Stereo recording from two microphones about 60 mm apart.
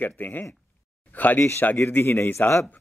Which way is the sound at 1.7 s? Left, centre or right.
Left.